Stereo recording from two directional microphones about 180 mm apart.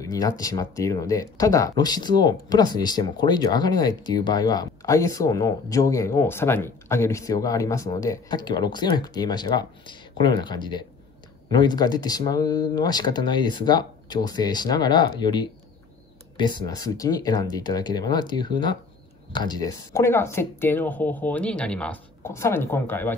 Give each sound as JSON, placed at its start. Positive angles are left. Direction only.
{"t": 0.0, "sound": "speech", "side_deg": 20}